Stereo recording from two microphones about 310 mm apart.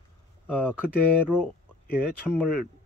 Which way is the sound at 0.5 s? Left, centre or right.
Centre.